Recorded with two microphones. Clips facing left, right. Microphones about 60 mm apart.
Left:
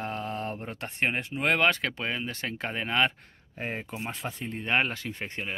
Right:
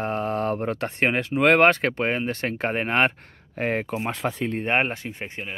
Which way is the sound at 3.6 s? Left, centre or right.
Right.